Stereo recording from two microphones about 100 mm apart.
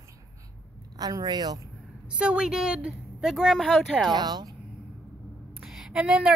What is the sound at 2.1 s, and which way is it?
A woman's voice, 10° right (ahead or behind).